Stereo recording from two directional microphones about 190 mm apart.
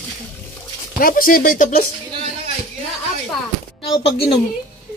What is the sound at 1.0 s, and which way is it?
Speech, 50° left (ahead or behind).